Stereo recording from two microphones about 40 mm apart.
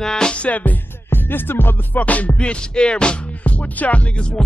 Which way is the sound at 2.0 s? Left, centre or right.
Left.